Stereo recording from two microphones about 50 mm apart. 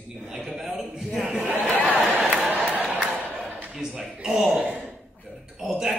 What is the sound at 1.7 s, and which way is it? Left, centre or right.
Speech, left.